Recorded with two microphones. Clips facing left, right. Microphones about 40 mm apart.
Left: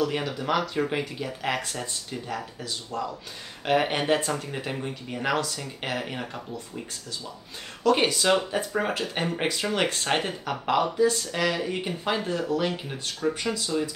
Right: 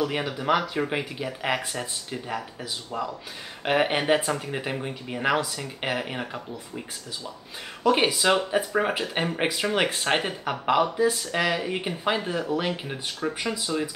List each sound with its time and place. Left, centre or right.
0.0 s speech: centre
7.8 s speech: centre